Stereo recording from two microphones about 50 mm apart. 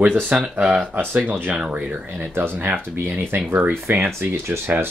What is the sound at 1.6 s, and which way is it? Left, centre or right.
Speech, right.